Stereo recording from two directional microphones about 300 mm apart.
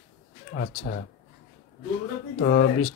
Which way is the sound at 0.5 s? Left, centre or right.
Left.